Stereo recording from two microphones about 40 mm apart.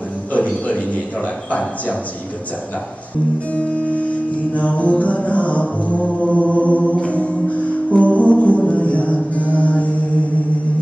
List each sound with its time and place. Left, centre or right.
0.3 s a sound: left
3.5 s music: left
9.6 s mantra: left